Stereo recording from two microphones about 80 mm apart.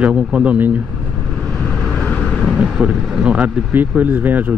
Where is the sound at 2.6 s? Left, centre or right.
Centre.